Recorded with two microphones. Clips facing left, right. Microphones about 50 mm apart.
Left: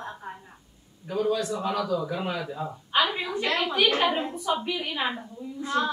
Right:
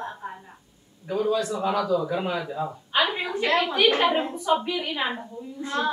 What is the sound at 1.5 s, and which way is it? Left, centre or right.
Speech, right.